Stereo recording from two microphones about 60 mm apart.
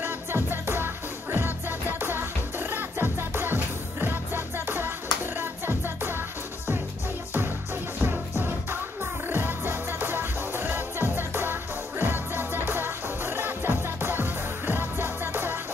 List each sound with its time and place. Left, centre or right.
0.0 s music: right
8.0 s music: right